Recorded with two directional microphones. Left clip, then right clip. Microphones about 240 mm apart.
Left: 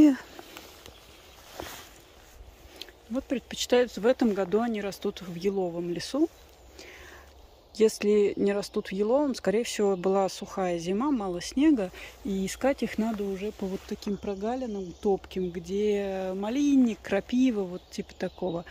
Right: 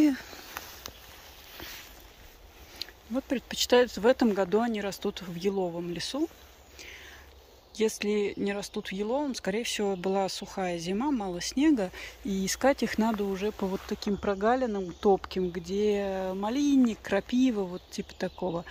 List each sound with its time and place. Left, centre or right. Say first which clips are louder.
0.0 s a sound: left 5 dB; centre
2.8 s speech: even; centre
7.7 s speech: left 5 dB; centre
15.2 s speech: right 1 dB; centre